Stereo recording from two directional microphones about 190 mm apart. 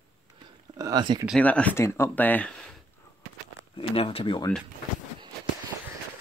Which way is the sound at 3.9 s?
30° left (ahead or behind).